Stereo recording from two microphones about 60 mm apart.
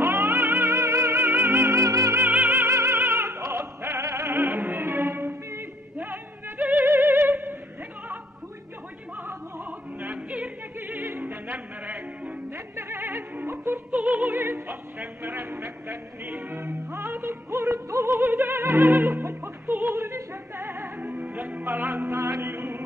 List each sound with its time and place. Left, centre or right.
0.0 s music: right
2.2 s music: right
2.6 s opera: right
6.6 s music: right
6.9 s music: right
9.7 s opera: right
10.1 s music: right
10.8 s music: right
12.5 s music: right
13.9 s music: right
14.4 s a sound: right
22.2 s music: right